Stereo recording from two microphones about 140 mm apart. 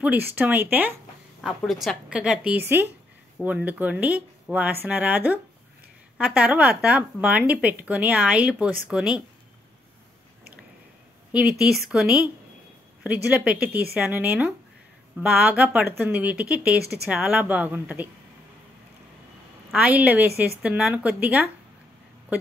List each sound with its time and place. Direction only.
0.0 s a woman's voice: 10° right (ahead or behind)
1.4 s a woman's voice: centre (ahead or behind)
11.3 s a woman's voice: 5° right (ahead or behind)
19.7 s a woman's voice: 5° right (ahead or behind)